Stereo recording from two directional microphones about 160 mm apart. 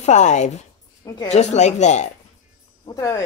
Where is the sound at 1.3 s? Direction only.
45° left (ahead or behind).